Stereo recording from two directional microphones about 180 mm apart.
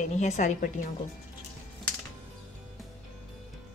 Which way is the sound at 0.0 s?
40° left (ahead or behind).